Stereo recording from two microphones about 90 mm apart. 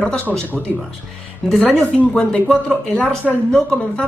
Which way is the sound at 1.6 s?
15° left (ahead or behind).